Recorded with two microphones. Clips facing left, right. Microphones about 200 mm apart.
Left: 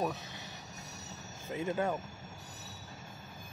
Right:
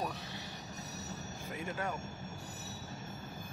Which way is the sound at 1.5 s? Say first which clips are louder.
Left 7 dB; 25° left (ahead or behind).